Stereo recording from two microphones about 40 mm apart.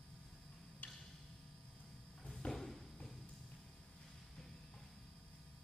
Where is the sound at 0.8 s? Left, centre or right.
Left.